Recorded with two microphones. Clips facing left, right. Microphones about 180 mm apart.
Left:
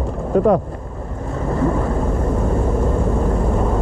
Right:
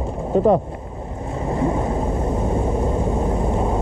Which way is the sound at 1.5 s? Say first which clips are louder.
Left 2 dB; 25° right (ahead or behind).